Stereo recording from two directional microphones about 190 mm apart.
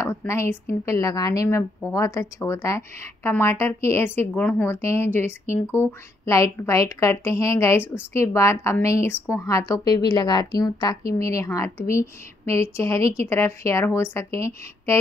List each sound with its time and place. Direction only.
0.0 s a woman's voice: 15° left (ahead or behind)